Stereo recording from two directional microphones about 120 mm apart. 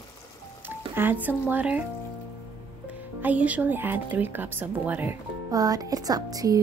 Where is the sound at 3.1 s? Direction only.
15° right (ahead or behind).